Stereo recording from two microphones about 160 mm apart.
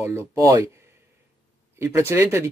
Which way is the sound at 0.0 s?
15° right (ahead or behind).